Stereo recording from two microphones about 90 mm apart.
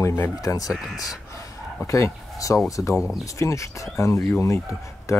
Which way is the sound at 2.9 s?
5° right (ahead or behind).